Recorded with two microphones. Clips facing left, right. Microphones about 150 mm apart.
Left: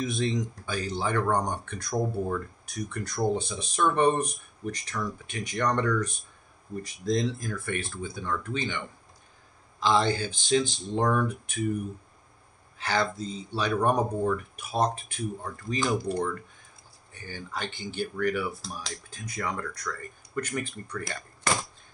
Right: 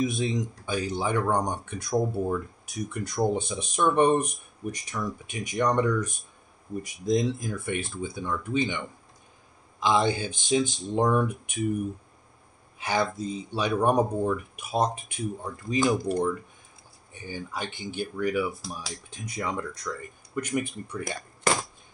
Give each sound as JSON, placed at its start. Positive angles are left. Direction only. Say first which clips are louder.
{"t": 0.0, "sound": "speech", "louder": "right 2 dB", "side_deg": -15}
{"t": 12.7, "sound": "speech", "louder": "right 1 dB", "side_deg": -15}
{"t": 19.0, "sound": "speech", "louder": "right 2 dB", "side_deg": -20}